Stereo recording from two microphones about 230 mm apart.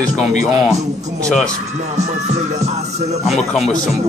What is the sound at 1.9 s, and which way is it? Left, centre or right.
Music, right.